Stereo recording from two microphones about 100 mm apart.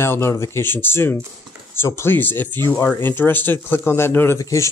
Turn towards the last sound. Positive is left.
turn(degrees=30)  # may be behind; listen again after turning